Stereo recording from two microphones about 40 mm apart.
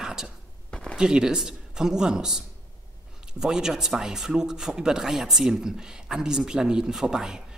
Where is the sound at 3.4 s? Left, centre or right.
Centre.